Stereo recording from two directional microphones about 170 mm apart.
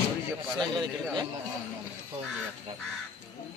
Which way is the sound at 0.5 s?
25° right (ahead or behind).